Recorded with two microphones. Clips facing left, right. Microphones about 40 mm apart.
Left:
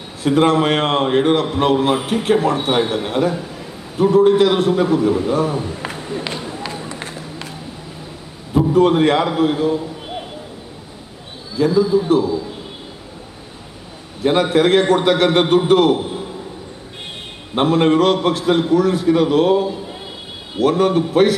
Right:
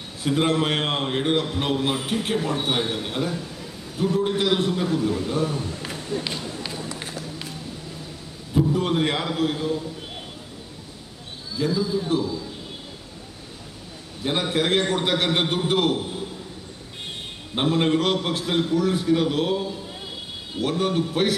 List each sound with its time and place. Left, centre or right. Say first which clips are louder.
0.2 s a man's voice: left 7 dB; left
1.4 s a man's voice: left 8 dB; left
5.8 s run: left 4 dB; left
8.7 s a man's voice: left 10 dB; left
9.3 s a man's voice: left 7 dB; left
11.5 s a man's voice: left 9 dB; left
14.2 s a man's voice: left 9 dB; left
17.6 s a man's voice: left 7 dB; left; by 20.0 s centre
20.5 s a man's voice: left 8 dB; left